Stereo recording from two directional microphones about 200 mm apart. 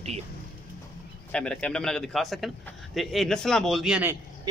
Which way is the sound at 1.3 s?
5° left (ahead or behind).